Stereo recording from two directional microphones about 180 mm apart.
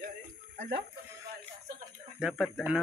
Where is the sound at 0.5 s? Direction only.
65° right (ahead or behind).